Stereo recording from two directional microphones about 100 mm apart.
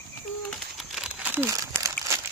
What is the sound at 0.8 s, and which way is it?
Crumpling, 5° right (ahead or behind).